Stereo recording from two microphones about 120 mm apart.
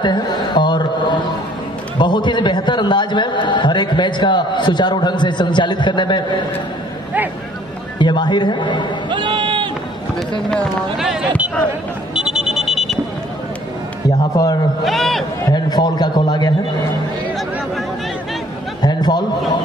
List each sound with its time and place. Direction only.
0.0 s a man's voice: 35° left (ahead or behind)
8.0 s a man's voice: 40° left (ahead or behind)
9.1 s sheep: 40° right (ahead or behind)
11.0 s a man's voice: 5° right (ahead or behind)
12.2 s a sound: 5° right (ahead or behind)
14.3 s a man's voice: 35° left (ahead or behind)
14.8 s a man's voice: centre (ahead or behind)
15.5 s a man's voice: 35° left (ahead or behind)
18.8 s a sound: 35° left (ahead or behind)